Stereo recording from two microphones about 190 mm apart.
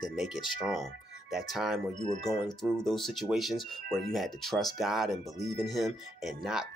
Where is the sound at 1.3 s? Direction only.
Centre (ahead or behind).